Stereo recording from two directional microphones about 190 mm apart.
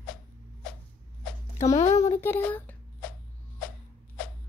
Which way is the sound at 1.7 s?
35° left (ahead or behind).